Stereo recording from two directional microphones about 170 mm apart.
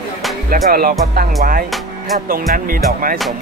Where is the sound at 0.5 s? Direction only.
55° right (ahead or behind).